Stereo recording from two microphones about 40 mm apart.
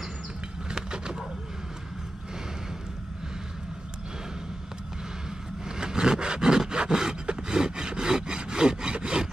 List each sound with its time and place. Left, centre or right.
0.7 s bird: right
5.7 s a sound: centre
7.2 s sawing: centre